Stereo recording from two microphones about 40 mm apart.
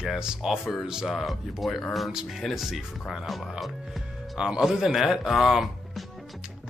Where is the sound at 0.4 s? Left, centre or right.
Centre.